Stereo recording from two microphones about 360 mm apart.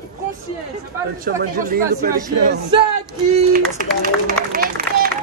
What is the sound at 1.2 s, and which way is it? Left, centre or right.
Speech, right.